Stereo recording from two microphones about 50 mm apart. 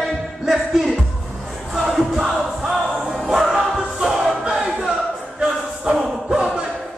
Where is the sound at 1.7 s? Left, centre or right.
Centre.